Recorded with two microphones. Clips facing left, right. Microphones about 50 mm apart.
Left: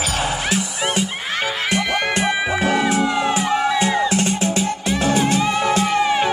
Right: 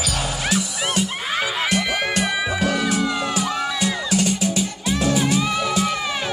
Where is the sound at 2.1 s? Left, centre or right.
Left.